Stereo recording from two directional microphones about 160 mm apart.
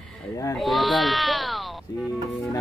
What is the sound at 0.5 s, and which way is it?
Speech, centre (ahead or behind).